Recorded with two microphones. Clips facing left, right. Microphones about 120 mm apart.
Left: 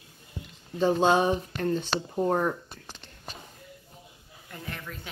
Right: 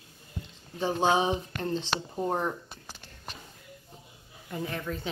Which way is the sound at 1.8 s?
10° left (ahead or behind).